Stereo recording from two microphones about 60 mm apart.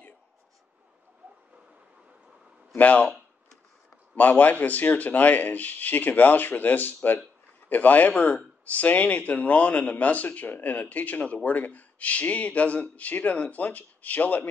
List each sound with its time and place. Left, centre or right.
1.2 s a sound: right
2.8 s speech: left
4.1 s speech: left